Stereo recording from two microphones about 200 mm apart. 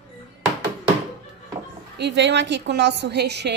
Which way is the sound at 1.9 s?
60° right (ahead or behind).